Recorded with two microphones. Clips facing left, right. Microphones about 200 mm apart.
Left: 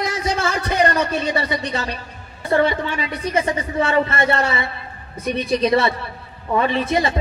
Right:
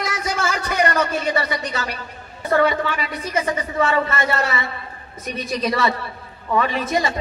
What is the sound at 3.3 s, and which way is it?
Speech, 30° left (ahead or behind).